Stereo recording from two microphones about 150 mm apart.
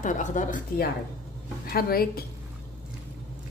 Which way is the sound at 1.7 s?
90° left.